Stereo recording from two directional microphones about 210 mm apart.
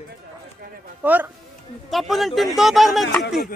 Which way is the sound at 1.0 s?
10° right (ahead or behind).